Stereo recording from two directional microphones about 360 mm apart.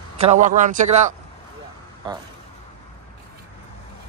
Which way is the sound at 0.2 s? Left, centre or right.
Centre.